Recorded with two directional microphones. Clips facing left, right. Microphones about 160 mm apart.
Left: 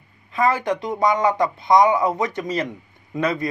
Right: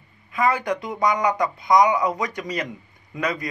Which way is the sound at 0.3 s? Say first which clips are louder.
Left 2 dB; 25° left (ahead or behind).